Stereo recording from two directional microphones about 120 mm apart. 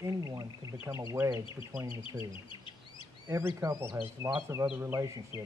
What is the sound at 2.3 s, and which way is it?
Bird, 45° left (ahead or behind).